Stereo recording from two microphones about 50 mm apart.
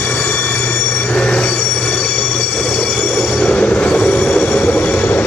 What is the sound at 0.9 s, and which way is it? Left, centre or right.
Train, centre.